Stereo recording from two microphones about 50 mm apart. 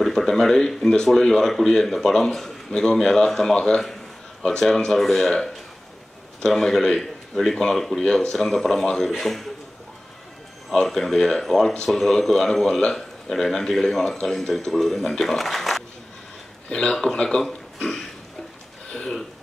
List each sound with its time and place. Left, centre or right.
0.0 s speech: centre
6.4 s speech: centre
10.7 s speech: centre
16.6 s speech: centre
18.9 s a sound: centre